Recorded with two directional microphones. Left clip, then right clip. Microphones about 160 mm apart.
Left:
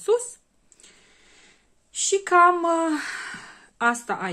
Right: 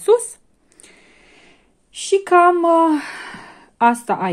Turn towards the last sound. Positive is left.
turn(degrees=-30)  # may be behind; listen again after turning